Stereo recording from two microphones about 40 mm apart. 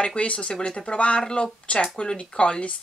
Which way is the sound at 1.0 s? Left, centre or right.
Left.